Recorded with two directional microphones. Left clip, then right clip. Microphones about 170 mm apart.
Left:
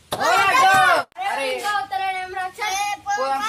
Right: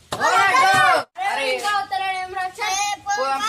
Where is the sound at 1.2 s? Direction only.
25° right (ahead or behind).